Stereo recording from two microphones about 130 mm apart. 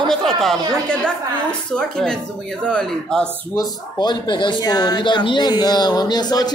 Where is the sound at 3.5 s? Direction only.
30° left (ahead or behind).